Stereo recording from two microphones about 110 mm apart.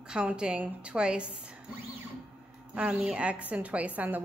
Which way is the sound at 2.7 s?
10° right (ahead or behind).